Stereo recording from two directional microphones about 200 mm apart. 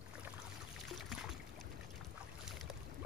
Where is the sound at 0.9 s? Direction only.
Centre (ahead or behind).